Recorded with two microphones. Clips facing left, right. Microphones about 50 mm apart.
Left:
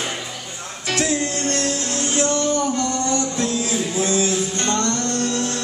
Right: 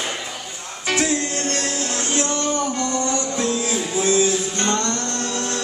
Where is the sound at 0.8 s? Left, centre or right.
Centre.